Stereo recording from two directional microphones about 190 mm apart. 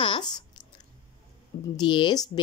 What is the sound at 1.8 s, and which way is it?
Speech, 25° left (ahead or behind).